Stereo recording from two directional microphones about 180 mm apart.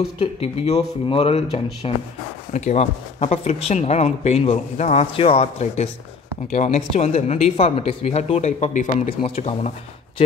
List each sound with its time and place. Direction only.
0.2 s speech: 35° left (ahead or behind)